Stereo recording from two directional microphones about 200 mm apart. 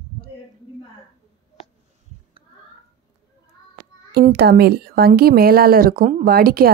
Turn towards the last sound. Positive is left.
turn(degrees=-50)  # may be behind; listen again after turning